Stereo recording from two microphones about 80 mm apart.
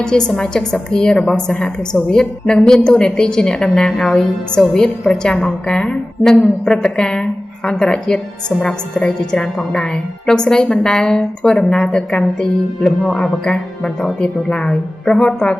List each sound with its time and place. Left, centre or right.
0.0 s a woman's voice: centre